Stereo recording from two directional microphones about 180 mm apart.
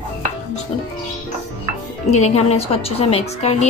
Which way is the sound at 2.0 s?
40° left (ahead or behind).